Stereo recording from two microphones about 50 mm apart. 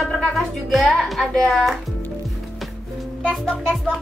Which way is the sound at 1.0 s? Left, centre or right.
Centre.